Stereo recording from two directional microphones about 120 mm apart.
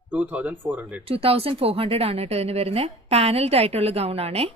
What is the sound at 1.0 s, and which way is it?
Speech, 55° right (ahead or behind).